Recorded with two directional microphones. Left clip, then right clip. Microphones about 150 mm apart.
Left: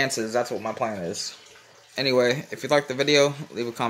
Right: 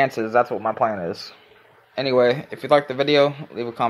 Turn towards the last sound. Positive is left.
turn(degrees=15)  # may be behind; listen again after turning